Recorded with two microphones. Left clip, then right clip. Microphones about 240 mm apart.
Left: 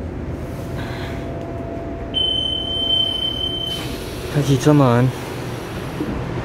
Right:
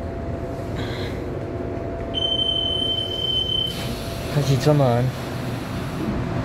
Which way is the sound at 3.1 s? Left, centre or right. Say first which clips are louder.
Left 2 dB; centre.